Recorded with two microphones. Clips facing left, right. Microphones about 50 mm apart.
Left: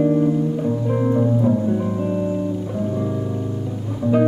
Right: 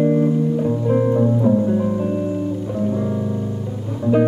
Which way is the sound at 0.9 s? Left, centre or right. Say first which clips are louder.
Right 2 dB; centre.